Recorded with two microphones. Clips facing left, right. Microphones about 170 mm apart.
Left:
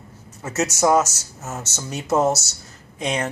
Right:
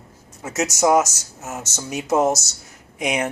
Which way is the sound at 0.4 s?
10° right (ahead or behind).